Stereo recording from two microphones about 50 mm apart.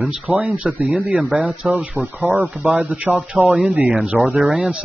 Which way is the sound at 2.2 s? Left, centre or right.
Right.